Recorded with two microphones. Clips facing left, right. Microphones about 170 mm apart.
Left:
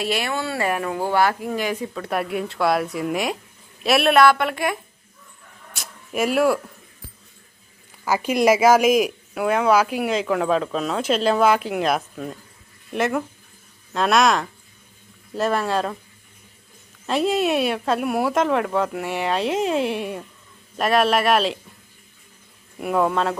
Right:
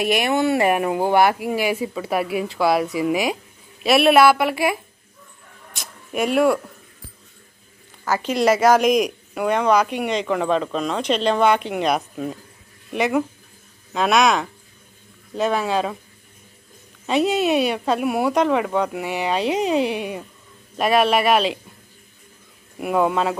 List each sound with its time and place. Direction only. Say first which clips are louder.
0.0 s speech: right 5 dB; 15° right (ahead or behind); by 6.6 s centre (ahead or behind)
8.0 s speech: left 1 dB; 10° left (ahead or behind)
17.0 s speech: right 1 dB; centre (ahead or behind)
22.8 s speech: right 1 dB; 5° right (ahead or behind)